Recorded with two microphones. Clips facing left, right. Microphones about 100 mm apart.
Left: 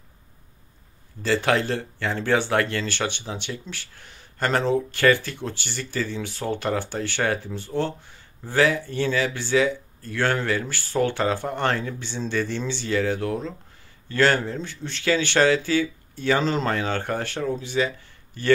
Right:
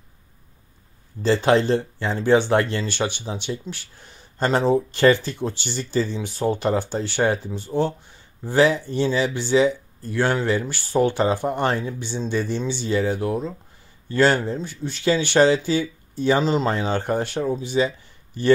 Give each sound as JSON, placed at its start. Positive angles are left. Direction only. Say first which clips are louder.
{"t": 1.2, "sound": "speech", "louder": "right 4 dB", "side_deg": -25}